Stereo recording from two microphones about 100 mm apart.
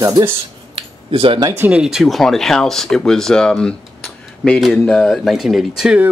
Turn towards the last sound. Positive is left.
turn(degrees=-5)  # may be behind; listen again after turning